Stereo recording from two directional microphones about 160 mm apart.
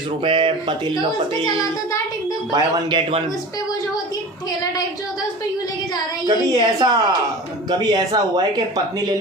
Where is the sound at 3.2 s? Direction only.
20° left (ahead or behind).